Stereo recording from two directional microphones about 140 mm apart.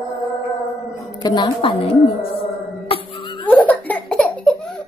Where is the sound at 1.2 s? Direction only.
35° left (ahead or behind).